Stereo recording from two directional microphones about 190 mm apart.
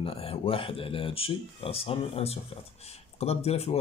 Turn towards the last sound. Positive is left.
turn(degrees=35)  # may be behind; listen again after turning